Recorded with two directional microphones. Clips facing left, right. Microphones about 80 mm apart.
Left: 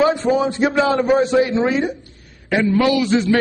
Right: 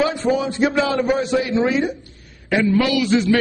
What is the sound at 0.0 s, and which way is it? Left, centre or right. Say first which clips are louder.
A man's voice: left 3 dB; left.